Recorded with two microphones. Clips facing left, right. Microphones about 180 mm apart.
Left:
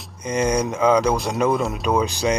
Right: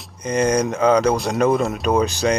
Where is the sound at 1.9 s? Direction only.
45° right (ahead or behind).